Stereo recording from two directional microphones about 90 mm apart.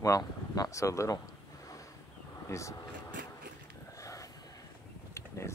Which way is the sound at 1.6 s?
40° left (ahead or behind).